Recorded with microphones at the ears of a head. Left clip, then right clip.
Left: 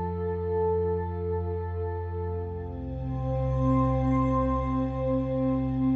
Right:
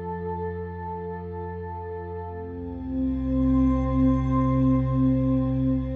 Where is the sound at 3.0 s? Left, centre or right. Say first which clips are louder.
Right 6 dB; right.